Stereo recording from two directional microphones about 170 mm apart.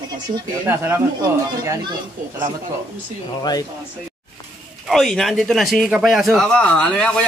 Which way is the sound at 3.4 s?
25° left (ahead or behind).